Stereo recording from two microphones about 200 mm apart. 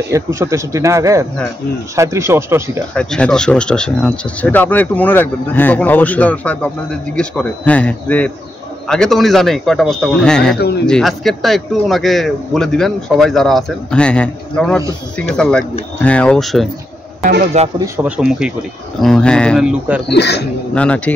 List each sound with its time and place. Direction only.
0.1 s speech: 15° right (ahead or behind)
2.9 s speech: 5° left (ahead or behind)
17.7 s speech: 15° right (ahead or behind)
20.1 s speech: 55° left (ahead or behind)
20.7 s speech: 5° left (ahead or behind)